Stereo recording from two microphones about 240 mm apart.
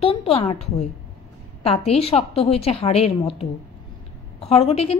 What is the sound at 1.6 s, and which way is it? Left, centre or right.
A woman's voice, left.